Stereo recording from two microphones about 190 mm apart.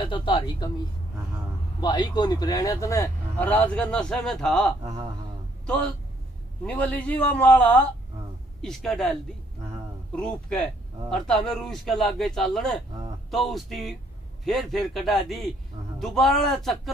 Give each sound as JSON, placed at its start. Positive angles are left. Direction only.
{"t": 0.0, "sound": "speech", "side_deg": 25}
{"t": 1.8, "sound": "a man's voice", "side_deg": 20}
{"t": 10.1, "sound": "a man's voice", "side_deg": 5}